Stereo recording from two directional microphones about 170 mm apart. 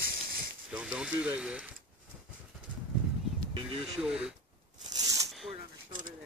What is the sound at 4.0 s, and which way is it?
Speech, 5° right (ahead or behind).